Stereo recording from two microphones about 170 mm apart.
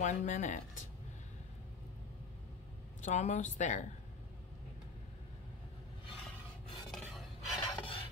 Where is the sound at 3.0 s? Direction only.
45° left (ahead or behind).